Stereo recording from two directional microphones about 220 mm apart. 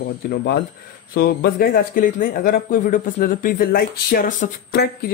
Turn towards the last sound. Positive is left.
turn(degrees=45)  # may be behind; listen again after turning